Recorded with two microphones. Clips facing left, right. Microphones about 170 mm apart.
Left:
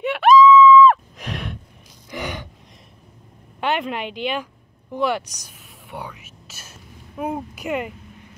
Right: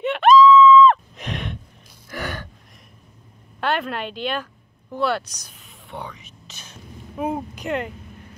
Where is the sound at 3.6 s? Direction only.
15° left (ahead or behind).